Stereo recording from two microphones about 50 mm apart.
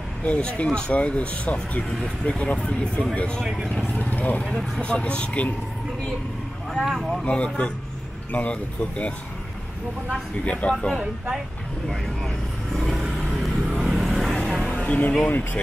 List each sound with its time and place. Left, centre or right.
0.2 s speech: left
4.0 s vehicle: left
4.5 s speech: centre
4.8 s speech: left
6.8 s speech: centre
7.2 s speech: left
10.4 s speech: left
12.7 s vehicle: centre
14.9 s speech: left